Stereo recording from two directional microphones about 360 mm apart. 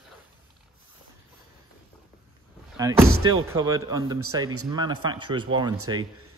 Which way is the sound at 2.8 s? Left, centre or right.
Centre.